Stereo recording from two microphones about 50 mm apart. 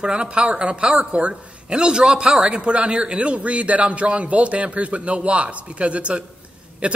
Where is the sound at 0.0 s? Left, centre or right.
Centre.